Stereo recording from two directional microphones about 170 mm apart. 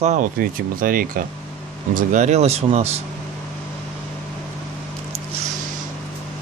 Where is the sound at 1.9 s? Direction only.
45° right (ahead or behind).